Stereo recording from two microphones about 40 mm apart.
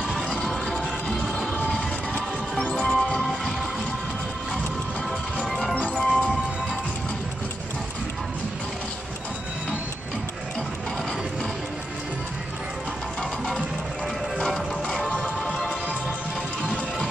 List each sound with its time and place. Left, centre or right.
0.5 s music: centre
2.7 s music: left
5.5 s music: centre
14.5 s music: centre